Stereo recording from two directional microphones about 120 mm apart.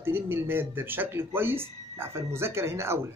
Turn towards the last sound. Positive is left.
turn(degrees=-20)  # may be behind; listen again after turning